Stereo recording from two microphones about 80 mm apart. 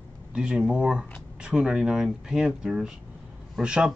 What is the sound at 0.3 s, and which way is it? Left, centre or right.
Speech, centre.